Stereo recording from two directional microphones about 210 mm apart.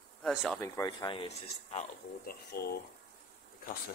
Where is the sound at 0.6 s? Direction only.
15° left (ahead or behind).